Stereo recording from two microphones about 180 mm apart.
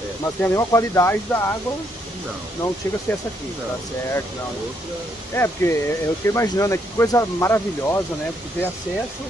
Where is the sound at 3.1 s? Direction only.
10° left (ahead or behind).